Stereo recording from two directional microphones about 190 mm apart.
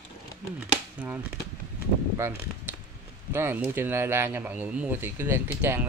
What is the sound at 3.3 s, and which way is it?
Speech, 10° right (ahead or behind).